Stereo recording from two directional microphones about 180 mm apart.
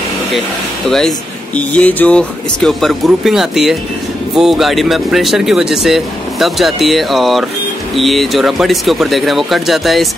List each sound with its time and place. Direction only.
0.8 s speech: centre (ahead or behind)